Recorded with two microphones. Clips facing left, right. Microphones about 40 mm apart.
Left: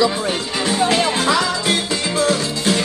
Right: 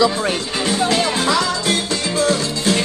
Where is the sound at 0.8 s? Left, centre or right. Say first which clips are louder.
Left 2 dB; left.